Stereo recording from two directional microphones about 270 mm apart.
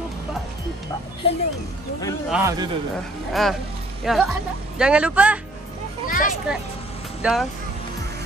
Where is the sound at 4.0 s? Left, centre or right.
Centre.